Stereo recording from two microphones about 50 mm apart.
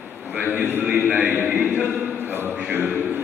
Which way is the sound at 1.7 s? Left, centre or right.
Right.